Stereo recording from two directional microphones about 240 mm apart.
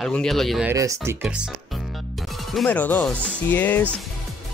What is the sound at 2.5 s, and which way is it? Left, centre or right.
Speech, centre.